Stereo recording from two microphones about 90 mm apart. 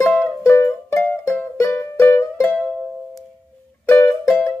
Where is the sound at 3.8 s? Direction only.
25° left (ahead or behind).